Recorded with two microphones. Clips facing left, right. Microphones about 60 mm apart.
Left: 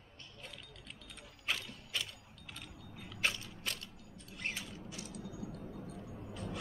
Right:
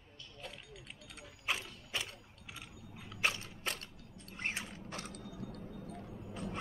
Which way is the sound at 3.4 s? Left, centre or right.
Right.